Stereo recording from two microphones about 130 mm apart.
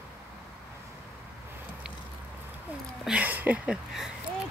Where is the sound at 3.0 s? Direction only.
10° right (ahead or behind).